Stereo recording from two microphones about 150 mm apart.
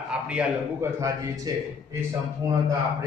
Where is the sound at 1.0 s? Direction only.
25° right (ahead or behind).